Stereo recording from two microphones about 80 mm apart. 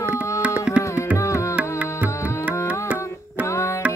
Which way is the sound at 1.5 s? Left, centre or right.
Centre.